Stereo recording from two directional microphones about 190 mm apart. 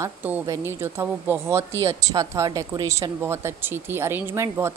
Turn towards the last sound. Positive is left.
turn(degrees=-15)  # may be behind; listen again after turning